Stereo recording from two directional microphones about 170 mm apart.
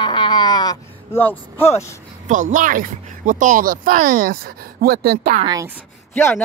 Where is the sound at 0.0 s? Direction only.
25° left (ahead or behind).